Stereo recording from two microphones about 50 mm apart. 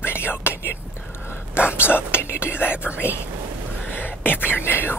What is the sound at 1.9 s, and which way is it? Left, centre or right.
Whispering, left.